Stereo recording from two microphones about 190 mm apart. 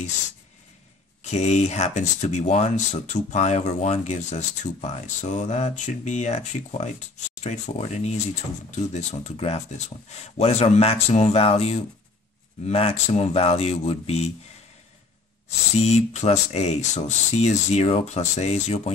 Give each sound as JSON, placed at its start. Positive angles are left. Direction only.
{"t": 1.3, "sound": "speech", "side_deg": 35}
{"t": 15.7, "sound": "speech", "side_deg": 35}